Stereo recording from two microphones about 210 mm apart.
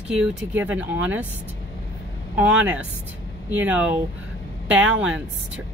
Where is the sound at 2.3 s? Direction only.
5° right (ahead or behind).